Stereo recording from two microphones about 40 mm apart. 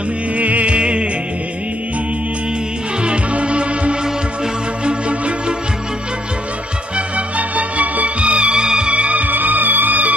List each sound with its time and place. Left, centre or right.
0.4 s music: right
3.0 s music: right
7.2 s music: right